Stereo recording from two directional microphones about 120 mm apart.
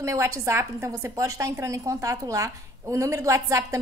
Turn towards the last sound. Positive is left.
turn(degrees=-25)  # may be behind; listen again after turning